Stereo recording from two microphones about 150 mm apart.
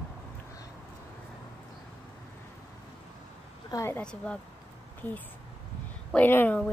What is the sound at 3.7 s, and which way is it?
Speech, 20° left (ahead or behind).